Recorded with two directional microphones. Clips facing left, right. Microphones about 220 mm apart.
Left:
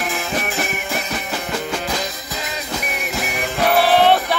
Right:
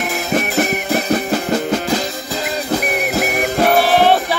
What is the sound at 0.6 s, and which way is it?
Music, 40° right (ahead or behind).